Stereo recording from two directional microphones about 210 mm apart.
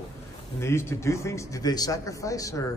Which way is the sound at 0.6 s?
15° left (ahead or behind).